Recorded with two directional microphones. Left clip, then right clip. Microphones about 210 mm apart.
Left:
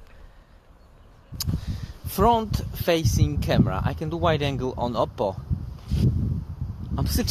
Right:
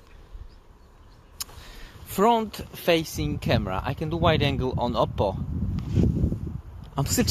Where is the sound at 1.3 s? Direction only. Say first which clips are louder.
Left 5 dB; centre (ahead or behind).